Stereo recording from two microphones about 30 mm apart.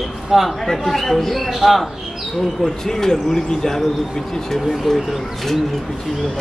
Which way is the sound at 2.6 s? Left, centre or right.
Centre.